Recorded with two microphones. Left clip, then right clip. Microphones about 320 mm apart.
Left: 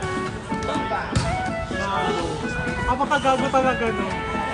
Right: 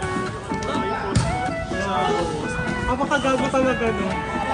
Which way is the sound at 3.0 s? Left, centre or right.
Left.